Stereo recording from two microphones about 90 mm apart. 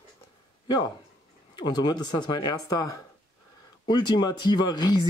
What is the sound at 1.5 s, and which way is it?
Speech, 50° left (ahead or behind).